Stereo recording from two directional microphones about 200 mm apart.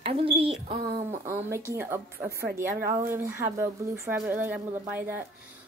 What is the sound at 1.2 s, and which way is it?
Speech, 15° right (ahead or behind).